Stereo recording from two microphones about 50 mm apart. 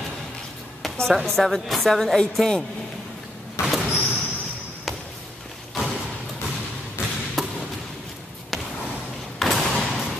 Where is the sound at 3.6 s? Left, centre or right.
Left.